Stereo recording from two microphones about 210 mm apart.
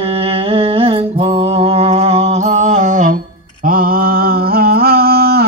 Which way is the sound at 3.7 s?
45° right (ahead or behind).